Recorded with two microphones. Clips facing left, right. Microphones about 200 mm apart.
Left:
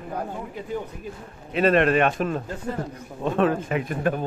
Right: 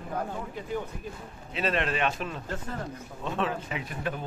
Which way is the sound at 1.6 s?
55° left (ahead or behind).